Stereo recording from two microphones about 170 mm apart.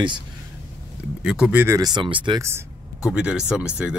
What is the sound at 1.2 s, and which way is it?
Speech, 5° right (ahead or behind).